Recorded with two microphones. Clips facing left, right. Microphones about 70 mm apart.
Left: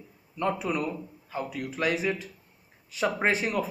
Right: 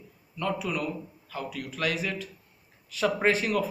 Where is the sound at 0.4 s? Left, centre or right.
Left.